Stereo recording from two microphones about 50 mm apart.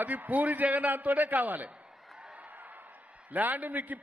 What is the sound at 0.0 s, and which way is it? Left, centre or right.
A man's voice, right.